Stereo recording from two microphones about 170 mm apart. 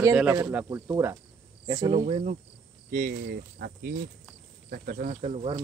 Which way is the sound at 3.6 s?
70° right (ahead or behind).